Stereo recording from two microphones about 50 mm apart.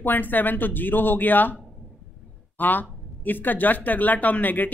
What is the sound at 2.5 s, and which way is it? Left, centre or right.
Speech, left.